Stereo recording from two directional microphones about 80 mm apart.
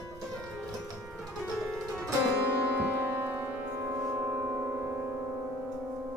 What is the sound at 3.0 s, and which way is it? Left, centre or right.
Music, right.